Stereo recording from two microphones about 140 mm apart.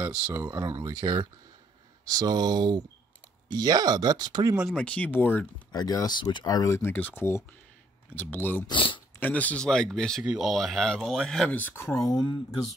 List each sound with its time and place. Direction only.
0.1 s speech: 15° right (ahead or behind)
0.5 s speech: 25° right (ahead or behind)
4.6 s speech: 5° left (ahead or behind)
5.7 s speech: 25° left (ahead or behind)
8.6 s speech: 35° left (ahead or behind)
9.2 s speech: 10° left (ahead or behind)
12.0 s speech: 25° left (ahead or behind)